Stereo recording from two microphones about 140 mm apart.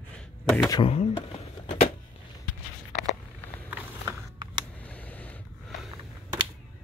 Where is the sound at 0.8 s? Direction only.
45° left (ahead or behind).